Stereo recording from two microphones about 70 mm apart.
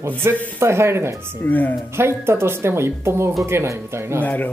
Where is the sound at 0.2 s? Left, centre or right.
Right.